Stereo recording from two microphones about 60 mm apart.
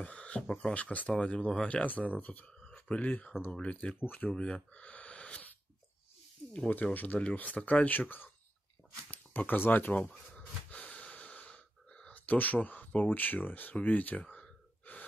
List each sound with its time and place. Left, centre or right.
0.0 s a sound: left
0.6 s speech: centre
4.0 s speech: left
4.3 s speech: centre
6.7 s speech: left
9.1 s gasp: left
12.1 s speech: left